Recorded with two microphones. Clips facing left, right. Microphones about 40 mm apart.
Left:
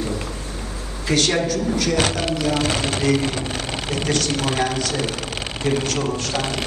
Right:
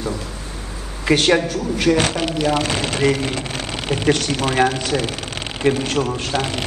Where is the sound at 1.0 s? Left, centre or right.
Right.